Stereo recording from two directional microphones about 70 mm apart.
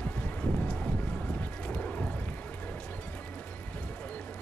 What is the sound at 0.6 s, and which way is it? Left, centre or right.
Vehicle, centre.